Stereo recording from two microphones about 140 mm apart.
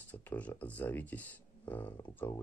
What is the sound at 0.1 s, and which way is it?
Speech, 10° left (ahead or behind).